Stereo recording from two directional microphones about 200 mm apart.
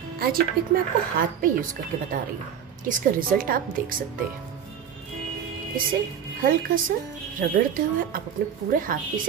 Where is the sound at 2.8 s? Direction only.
45° right (ahead or behind).